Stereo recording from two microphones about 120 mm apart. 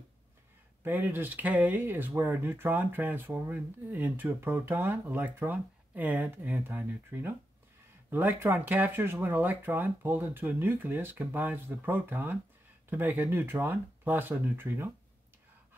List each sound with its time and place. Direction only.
0.8 s speech: 15° right (ahead or behind)